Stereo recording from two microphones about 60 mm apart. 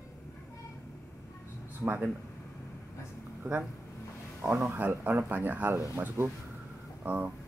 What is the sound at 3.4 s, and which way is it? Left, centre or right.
Speech, right.